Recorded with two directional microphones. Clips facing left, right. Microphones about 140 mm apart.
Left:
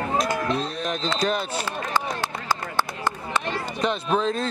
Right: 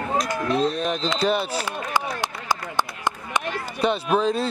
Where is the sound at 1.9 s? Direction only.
15° right (ahead or behind).